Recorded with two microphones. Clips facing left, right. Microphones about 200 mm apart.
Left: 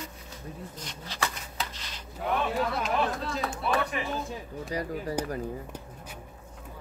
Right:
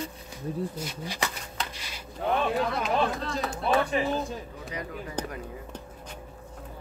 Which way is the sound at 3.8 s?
30° right (ahead or behind).